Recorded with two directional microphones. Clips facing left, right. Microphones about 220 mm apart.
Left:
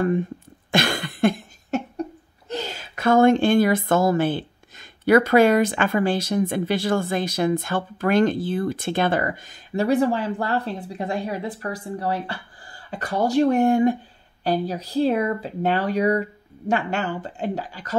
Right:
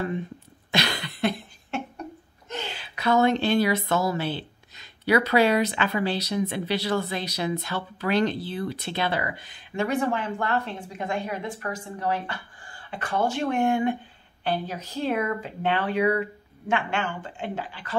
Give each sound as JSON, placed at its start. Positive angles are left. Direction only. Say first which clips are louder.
{"t": 0.7, "sound": "speech", "louder": "left 5 dB", "side_deg": 50}